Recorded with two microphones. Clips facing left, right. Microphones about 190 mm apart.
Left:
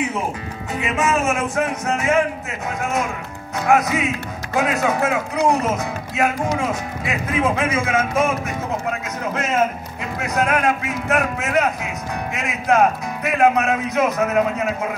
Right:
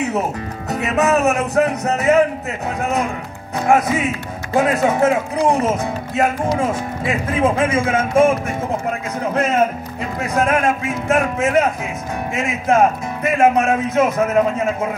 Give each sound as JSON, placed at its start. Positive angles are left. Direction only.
{"t": 0.7, "sound": "music", "side_deg": -40}
{"t": 4.6, "sound": "speech", "side_deg": -30}
{"t": 10.2, "sound": "speech", "side_deg": -30}